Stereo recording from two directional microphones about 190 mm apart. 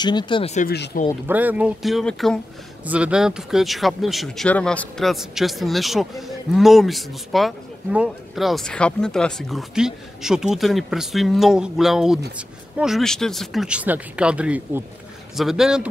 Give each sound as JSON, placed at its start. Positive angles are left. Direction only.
{"t": 0.0, "sound": "speech", "side_deg": 25}
{"t": 0.6, "sound": "speech", "side_deg": 50}
{"t": 1.2, "sound": "speech", "side_deg": -10}